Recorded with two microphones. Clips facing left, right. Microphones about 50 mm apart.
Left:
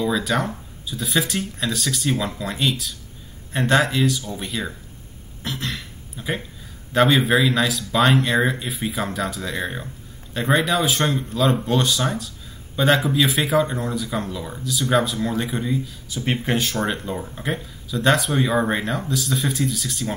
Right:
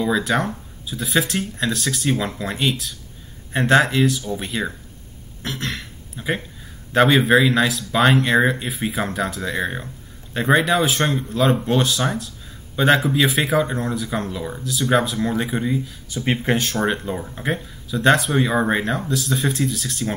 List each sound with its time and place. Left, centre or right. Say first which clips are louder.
0.0 s speech: right 2 dB; centre
3.7 s speech: right 3 dB; centre
4.4 s speech: right 2 dB; centre
5.4 s a sound: right 1 dB; centre
7.0 s speech: right 2 dB; centre
14.3 s speech: right 3 dB; centre
14.6 s speech: right 1 dB; centre
15.1 s speech: right 2 dB; centre